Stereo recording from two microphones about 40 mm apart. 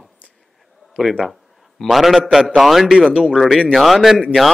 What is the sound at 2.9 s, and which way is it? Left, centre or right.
Speech, right.